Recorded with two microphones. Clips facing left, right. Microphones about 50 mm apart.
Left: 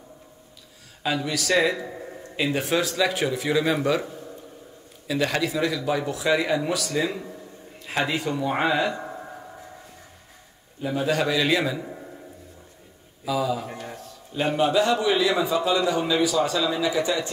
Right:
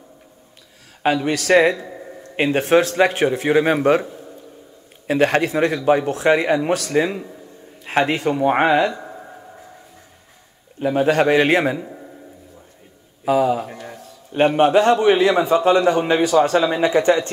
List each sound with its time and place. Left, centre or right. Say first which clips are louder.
1.0 s a man's voice: right 7 dB; right
1.9 s a sound: right 2 dB; centre
2.3 s speech: right 8 dB; right
5.0 s a man's voice: right 7 dB; right
8.9 s a sound: even; centre
10.8 s a man's voice: right 7 dB; right
13.2 s a man's voice: right 8 dB; right